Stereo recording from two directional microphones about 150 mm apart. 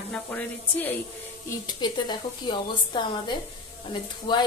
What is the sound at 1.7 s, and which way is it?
A woman's voice, 30° left (ahead or behind).